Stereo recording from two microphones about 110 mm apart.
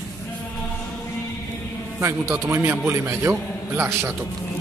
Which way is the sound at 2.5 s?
25° right (ahead or behind).